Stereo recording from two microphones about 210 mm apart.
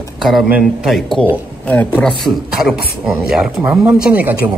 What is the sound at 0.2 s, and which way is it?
Speech, centre (ahead or behind).